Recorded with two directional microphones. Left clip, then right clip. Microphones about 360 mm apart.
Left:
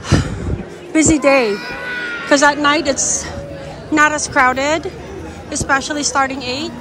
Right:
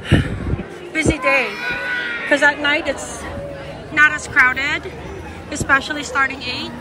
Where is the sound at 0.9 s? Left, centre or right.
Centre.